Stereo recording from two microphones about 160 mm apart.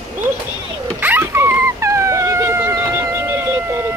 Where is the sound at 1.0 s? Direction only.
10° right (ahead or behind).